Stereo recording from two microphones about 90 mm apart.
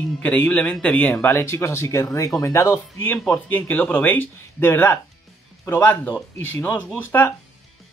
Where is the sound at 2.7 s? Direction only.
20° left (ahead or behind).